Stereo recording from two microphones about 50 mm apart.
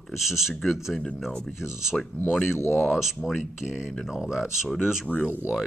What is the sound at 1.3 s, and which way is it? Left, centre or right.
Speech, centre.